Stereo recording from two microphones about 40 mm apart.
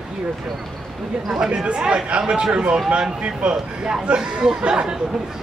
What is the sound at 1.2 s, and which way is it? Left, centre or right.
Speech, centre.